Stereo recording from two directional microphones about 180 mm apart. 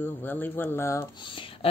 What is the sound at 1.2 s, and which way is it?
Speech, 30° left (ahead or behind).